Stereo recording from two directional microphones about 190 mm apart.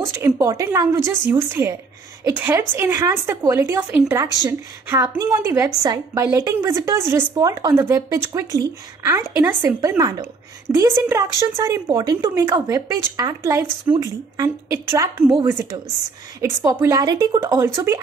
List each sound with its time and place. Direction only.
0.1 s a woman's voice: 15° right (ahead or behind)